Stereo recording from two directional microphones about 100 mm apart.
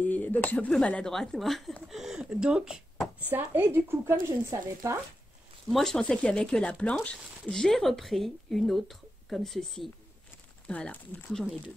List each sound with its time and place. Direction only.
0.0 s a sound: 15° left (ahead or behind)
0.7 s speech: 10° left (ahead or behind); by 3.1 s 5° right (ahead or behind)
3.3 s speech: 20° right (ahead or behind)
5.7 s speech: 5° left (ahead or behind)
10.7 s speech: 15° left (ahead or behind)